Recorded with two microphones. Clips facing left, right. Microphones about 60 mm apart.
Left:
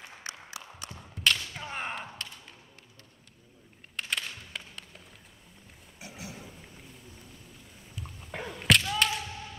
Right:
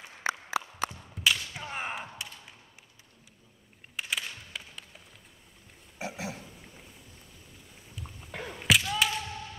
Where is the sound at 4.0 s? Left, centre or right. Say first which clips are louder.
Even; centre.